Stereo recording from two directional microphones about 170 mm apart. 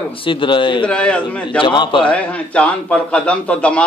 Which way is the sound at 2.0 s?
5° left (ahead or behind).